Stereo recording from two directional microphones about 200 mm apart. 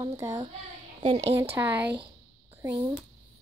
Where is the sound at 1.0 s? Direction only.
30° right (ahead or behind).